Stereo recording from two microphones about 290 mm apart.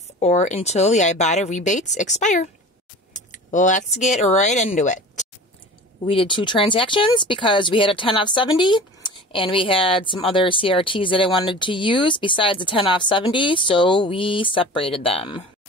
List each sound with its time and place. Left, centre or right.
0.2 s speech: left